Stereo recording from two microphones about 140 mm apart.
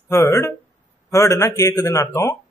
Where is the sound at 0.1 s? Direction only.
20° left (ahead or behind).